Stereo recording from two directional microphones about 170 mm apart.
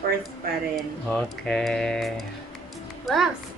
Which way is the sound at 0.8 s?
Centre (ahead or behind).